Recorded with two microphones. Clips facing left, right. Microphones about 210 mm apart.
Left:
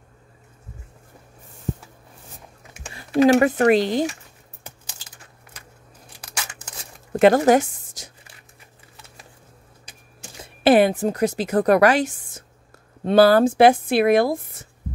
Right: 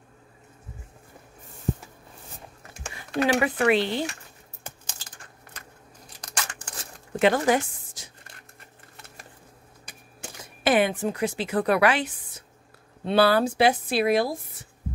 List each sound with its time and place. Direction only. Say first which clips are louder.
3.3 s speech: left 6 dB; 45° left (ahead or behind)
7.2 s a woman's voice: left 7 dB; 45° left (ahead or behind)
10.4 s a woman's voice: left 7 dB; 35° left (ahead or behind); by 14.4 s 55° left (ahead or behind)